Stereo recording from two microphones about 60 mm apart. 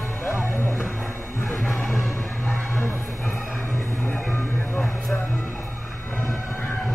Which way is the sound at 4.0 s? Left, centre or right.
Left.